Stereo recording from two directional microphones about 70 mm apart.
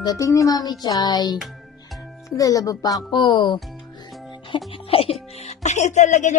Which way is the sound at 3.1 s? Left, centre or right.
Left.